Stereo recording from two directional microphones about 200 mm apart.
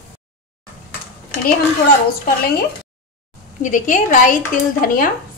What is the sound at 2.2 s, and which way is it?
Speech, 50° left (ahead or behind).